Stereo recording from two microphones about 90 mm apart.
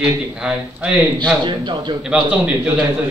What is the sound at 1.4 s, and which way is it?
Speech, 60° right (ahead or behind).